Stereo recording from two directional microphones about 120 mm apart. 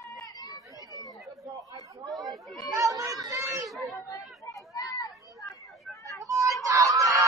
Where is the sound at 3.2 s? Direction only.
25° right (ahead or behind).